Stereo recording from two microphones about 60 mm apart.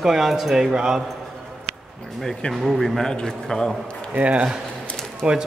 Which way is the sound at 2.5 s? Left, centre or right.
Centre.